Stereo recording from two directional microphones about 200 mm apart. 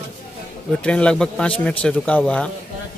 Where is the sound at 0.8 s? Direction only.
5° left (ahead or behind).